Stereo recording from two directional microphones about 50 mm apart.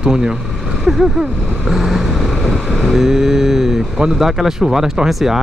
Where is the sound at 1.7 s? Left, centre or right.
Centre.